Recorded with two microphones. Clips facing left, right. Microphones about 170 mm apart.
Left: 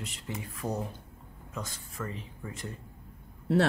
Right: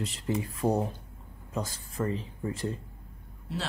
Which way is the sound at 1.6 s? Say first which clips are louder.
Right 6 dB; 35° right (ahead or behind).